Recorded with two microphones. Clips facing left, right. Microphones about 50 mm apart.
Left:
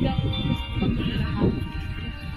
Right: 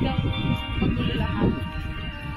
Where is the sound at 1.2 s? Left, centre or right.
Right.